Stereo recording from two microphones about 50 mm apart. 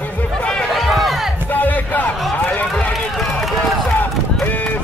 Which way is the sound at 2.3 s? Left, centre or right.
Left.